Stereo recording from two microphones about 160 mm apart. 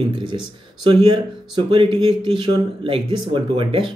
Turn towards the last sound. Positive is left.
turn(degrees=-30)  # may be behind; listen again after turning